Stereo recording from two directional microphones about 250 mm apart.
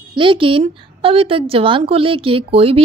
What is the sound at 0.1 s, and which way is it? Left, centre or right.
A woman's voice, right.